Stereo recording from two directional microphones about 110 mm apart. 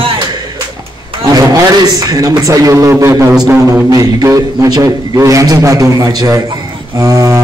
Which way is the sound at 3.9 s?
30° right (ahead or behind).